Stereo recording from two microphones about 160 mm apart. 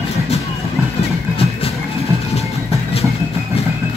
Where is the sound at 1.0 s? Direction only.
35° left (ahead or behind).